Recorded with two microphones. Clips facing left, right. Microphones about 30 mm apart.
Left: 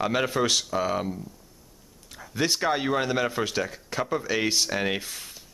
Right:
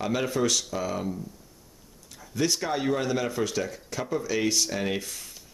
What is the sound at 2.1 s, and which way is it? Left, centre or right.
Speech, left.